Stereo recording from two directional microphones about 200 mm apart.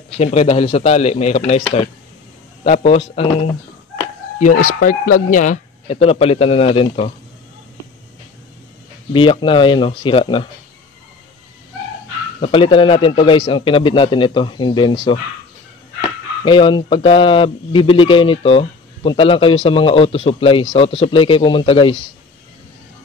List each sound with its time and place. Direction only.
0.2 s speech: 30° left (ahead or behind)
2.6 s speech: 35° left (ahead or behind)
4.4 s speech: 40° left (ahead or behind)
9.1 s speech: 25° left (ahead or behind)
12.4 s speech: 25° left (ahead or behind)